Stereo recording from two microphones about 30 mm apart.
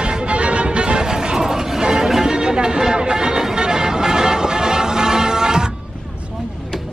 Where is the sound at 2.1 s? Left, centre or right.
Right.